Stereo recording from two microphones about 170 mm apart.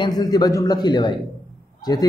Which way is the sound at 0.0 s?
25° left (ahead or behind).